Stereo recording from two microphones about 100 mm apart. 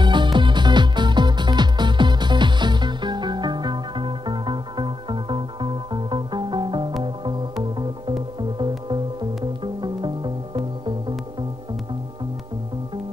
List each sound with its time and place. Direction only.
0.0 s music: 50° right (ahead or behind)